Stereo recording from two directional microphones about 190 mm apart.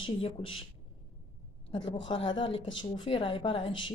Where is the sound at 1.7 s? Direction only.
25° left (ahead or behind).